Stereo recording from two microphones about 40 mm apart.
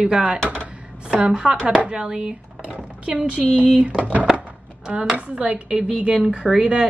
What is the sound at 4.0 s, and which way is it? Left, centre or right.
Speech, right.